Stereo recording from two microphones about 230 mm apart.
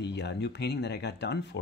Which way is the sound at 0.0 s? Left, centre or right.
Left.